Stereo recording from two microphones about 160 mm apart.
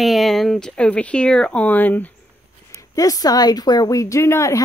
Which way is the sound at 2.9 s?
20° left (ahead or behind).